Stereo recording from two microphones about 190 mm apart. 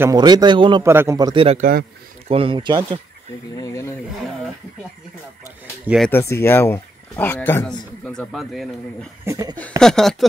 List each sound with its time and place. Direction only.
0.0 s a man's voice: 20° right (ahead or behind)
1.6 s speech: 50° right (ahead or behind)
2.2 s a man's voice: 30° right (ahead or behind)
3.5 s speech: 15° left (ahead or behind)
5.9 s speech: centre (ahead or behind)
6.1 s speech: 15° left (ahead or behind)
9.2 s speech: 15° right (ahead or behind)
9.6 s speech: 5° left (ahead or behind)